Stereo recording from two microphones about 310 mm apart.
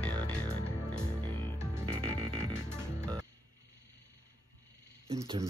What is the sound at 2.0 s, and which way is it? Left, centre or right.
Music, centre.